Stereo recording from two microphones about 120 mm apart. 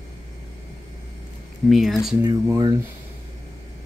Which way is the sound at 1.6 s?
Centre (ahead or behind).